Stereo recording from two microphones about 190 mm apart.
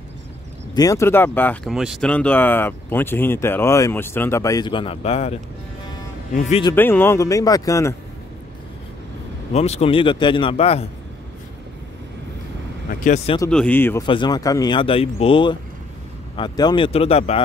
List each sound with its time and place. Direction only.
0.7 s speech: 15° left (ahead or behind); by 5.3 s 30° left (ahead or behind)
6.3 s speech: 40° left (ahead or behind)
6.7 s speech: 10° left (ahead or behind)
9.5 s speech: 35° left (ahead or behind)
13.5 s speech: 5° left (ahead or behind)
14.0 s speech: 25° left (ahead or behind)